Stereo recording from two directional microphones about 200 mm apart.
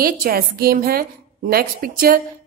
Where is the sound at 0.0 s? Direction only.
50° right (ahead or behind).